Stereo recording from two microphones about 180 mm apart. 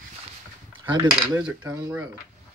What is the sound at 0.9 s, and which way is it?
Cutlery, 20° right (ahead or behind).